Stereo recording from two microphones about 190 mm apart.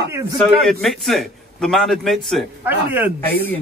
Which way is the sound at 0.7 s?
Centre (ahead or behind).